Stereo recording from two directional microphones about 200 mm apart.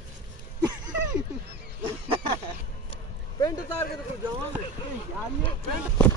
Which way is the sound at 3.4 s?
20° left (ahead or behind).